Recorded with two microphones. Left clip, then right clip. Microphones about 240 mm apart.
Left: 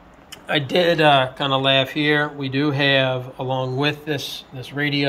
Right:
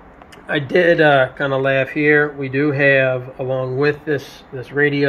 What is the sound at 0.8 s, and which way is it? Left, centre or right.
Speech, left.